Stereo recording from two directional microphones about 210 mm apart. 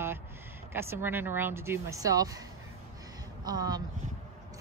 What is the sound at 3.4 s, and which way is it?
Speech, 20° right (ahead or behind).